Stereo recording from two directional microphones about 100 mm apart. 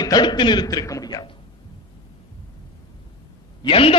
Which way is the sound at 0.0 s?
45° left (ahead or behind).